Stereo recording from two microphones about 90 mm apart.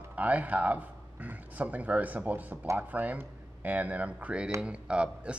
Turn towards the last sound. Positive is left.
turn(degrees=-10)  # may be behind; listen again after turning